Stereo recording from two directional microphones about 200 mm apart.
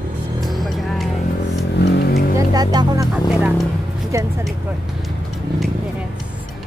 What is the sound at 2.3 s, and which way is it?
Speech, 20° right (ahead or behind).